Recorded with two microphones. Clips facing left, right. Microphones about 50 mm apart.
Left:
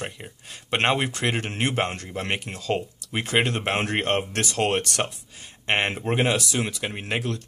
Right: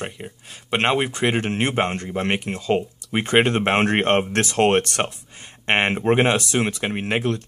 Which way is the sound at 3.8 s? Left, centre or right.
Right.